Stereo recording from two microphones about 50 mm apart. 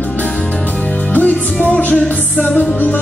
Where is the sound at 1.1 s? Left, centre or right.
Left.